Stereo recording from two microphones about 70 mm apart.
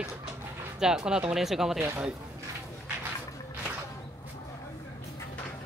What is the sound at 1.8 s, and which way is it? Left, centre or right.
Speech, right.